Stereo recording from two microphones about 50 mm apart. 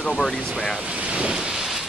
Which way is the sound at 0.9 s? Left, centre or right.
Right.